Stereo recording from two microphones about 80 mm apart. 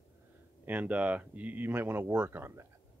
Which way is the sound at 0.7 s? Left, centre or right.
Centre.